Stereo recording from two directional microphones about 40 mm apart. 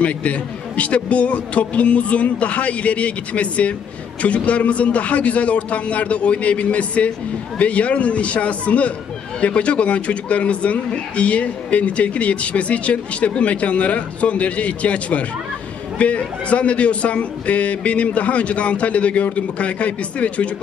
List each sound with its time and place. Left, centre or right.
0.0 s a man's voice: left